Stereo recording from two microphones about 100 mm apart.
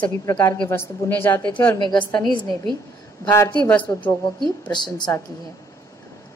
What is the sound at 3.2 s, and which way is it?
Speech, 25° left (ahead or behind).